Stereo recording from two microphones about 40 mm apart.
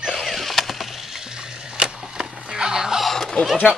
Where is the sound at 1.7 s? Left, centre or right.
Centre.